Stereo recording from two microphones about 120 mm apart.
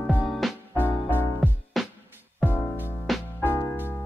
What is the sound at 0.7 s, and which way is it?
Music, 15° left (ahead or behind).